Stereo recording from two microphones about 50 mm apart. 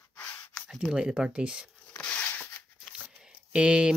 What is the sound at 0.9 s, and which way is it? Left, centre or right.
Speech, centre.